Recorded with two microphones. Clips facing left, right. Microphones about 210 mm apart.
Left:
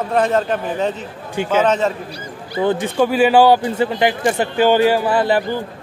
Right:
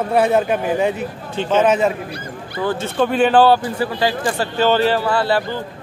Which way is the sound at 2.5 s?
20° left (ahead or behind).